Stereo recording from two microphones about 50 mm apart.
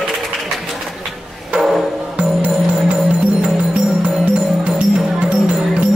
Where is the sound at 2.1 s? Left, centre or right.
Right.